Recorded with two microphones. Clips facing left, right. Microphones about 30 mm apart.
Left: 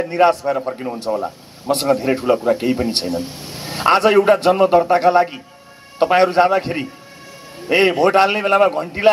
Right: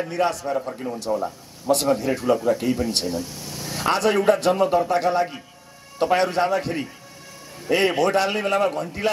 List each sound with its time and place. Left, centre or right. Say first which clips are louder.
0.1 s a man's voice: left 10 dB; left